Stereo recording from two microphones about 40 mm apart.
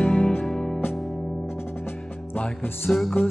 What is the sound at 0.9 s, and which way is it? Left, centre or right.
Music, centre.